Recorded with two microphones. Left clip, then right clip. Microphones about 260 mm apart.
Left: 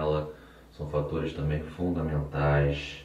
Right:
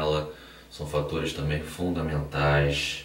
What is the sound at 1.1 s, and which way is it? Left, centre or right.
Speech, centre.